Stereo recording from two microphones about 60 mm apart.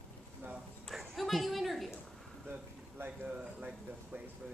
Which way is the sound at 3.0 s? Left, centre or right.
Centre.